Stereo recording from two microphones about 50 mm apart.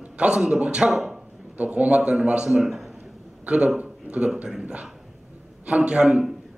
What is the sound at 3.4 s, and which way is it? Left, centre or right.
Speech, right.